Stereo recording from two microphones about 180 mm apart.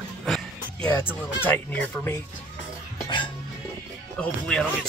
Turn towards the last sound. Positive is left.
turn(degrees=5)  # may be behind; listen again after turning